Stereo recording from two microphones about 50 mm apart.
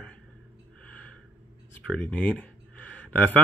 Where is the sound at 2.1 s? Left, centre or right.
Left.